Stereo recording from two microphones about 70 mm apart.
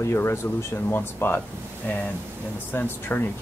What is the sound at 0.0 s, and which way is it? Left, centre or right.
Speech, left.